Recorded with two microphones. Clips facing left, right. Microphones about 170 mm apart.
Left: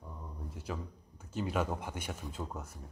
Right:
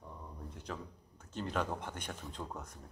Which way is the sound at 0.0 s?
5° left (ahead or behind).